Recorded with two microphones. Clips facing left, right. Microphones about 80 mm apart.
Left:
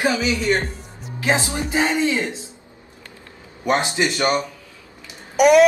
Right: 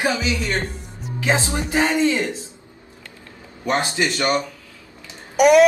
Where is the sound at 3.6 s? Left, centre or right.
Centre.